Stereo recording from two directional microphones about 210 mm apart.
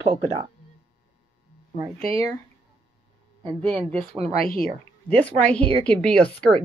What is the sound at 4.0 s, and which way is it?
Speech, 25° right (ahead or behind).